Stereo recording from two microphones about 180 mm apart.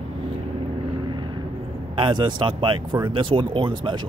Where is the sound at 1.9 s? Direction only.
25° right (ahead or behind).